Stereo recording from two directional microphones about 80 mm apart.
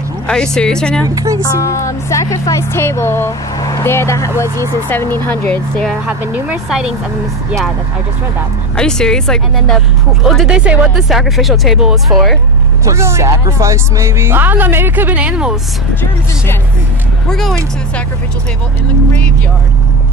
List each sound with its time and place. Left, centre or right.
0.3 s speech: centre
1.0 s speech: right
1.4 s speech: left
3.5 s vehicle: left
3.8 s speech: left
5.2 s speech: left
8.7 s speech: centre
10.2 s speech: centre
11.1 s speech: centre
12.8 s speech: right; by 15.5 s centre
17.3 s speech: centre